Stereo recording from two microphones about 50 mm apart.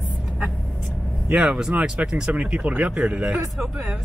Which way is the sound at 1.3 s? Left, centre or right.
Centre.